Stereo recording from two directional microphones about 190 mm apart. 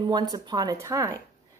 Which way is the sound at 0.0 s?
20° right (ahead or behind).